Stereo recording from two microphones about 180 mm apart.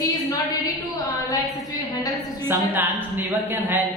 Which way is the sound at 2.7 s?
10° right (ahead or behind).